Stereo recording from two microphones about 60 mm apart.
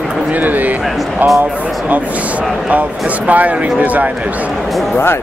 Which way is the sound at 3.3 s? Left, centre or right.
Right.